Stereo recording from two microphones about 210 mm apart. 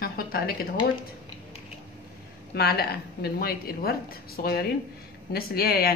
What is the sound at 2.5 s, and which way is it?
A woman's voice, 45° left (ahead or behind).